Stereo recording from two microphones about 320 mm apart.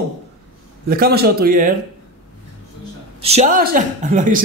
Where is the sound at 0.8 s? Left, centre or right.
Right.